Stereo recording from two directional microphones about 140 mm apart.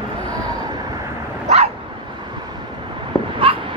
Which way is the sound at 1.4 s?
50° right (ahead or behind).